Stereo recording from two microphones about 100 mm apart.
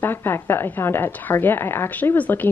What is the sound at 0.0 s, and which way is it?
Speech, 20° left (ahead or behind).